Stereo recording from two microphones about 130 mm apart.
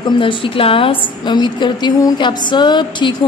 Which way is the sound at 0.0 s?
40° left (ahead or behind).